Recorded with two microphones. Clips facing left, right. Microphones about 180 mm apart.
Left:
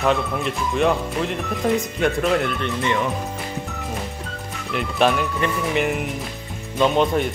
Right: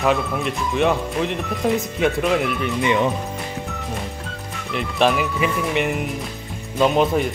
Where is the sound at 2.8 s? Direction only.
15° right (ahead or behind).